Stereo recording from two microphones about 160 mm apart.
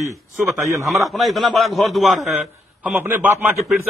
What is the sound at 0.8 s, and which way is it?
A man's voice, centre (ahead or behind).